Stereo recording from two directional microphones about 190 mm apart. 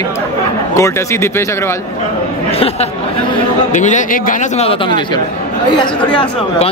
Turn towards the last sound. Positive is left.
turn(degrees=25)  # may be behind; listen again after turning